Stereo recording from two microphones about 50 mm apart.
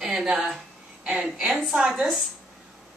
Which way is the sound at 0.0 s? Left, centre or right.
Centre.